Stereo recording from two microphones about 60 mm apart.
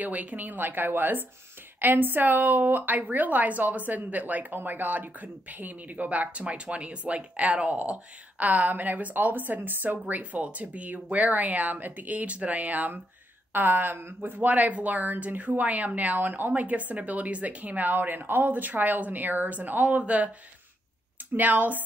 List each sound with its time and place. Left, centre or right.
0.0 s a woman's voice: right
21.3 s a woman's voice: right